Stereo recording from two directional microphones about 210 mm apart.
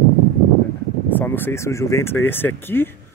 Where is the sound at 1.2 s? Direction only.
10° left (ahead or behind).